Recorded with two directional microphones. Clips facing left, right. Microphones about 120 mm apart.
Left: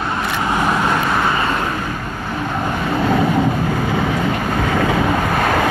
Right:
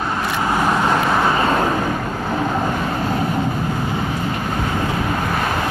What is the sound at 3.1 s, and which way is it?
Train, 80° left.